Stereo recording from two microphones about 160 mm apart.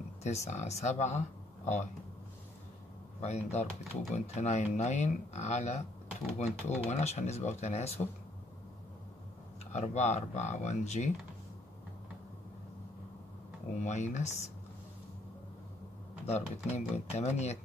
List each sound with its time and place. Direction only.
0.2 s speech: 45° left (ahead or behind)
3.2 s speech: 45° left (ahead or behind)
9.7 s speech: 45° left (ahead or behind)
13.8 s speech: 50° left (ahead or behind)
16.3 s speech: 45° left (ahead or behind)